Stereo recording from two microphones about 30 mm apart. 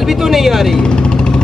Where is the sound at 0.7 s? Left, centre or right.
Left.